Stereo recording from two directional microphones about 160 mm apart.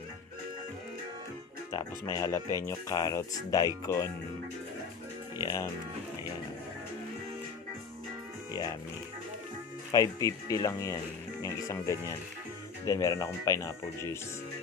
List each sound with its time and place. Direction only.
2.1 s speech: 20° left (ahead or behind)
5.4 s speech: 25° left (ahead or behind)
9.8 s speech: 20° left (ahead or behind)